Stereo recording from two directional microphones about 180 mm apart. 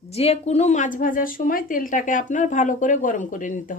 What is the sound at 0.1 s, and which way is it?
A woman's voice, 35° left (ahead or behind).